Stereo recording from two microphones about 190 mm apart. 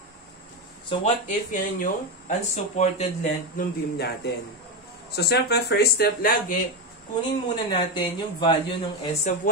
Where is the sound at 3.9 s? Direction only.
60° left (ahead or behind).